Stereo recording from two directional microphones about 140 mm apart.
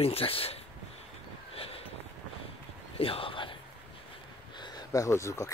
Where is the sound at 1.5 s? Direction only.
45° left (ahead or behind).